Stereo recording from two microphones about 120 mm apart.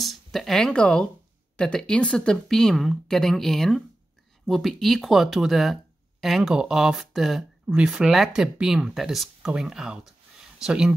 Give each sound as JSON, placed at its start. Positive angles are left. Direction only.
{"t": 0.0, "sound": "speech", "side_deg": 0}